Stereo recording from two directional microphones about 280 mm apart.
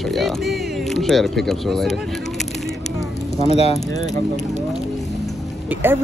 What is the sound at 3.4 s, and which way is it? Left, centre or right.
Speech, left.